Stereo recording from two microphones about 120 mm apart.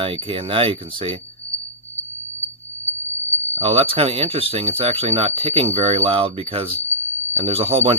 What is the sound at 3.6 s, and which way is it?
Speech, 50° right (ahead or behind).